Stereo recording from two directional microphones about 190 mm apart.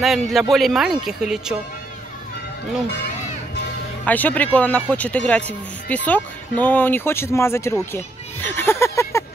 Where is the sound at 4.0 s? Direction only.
10° left (ahead or behind).